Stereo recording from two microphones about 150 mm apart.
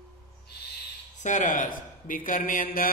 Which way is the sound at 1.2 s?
55° left (ahead or behind).